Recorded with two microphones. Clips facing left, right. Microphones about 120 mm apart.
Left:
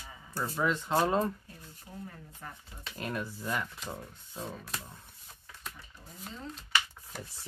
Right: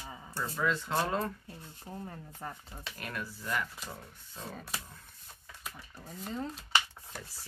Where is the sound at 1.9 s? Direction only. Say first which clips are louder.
Right 2 dB; 35° right (ahead or behind).